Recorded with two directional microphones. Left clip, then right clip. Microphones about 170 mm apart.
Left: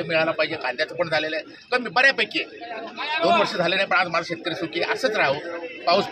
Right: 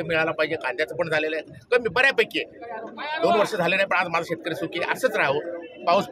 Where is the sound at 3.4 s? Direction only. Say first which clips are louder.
Even; 40° right (ahead or behind).